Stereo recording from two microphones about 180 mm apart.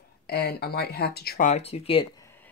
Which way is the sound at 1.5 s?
35° left (ahead or behind).